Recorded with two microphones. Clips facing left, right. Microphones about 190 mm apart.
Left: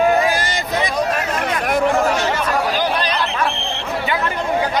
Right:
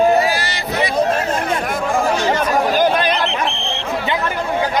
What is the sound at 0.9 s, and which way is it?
Speech, 30° right (ahead or behind).